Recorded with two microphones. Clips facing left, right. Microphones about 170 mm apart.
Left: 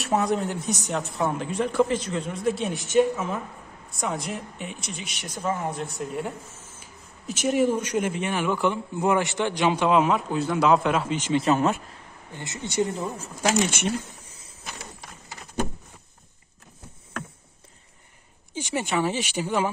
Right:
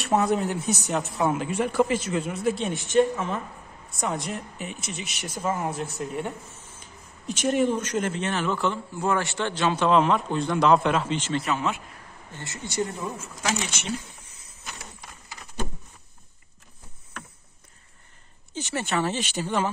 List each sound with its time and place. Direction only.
0.0 s speech: centre (ahead or behind)
11.4 s speech: 45° left (ahead or behind)
12.3 s speech: 15° left (ahead or behind)
13.2 s speech: 40° left (ahead or behind)
13.7 s speech: 55° left (ahead or behind)
18.5 s speech: 15° left (ahead or behind)